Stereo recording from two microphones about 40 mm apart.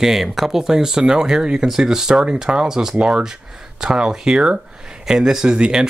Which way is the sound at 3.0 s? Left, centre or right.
Right.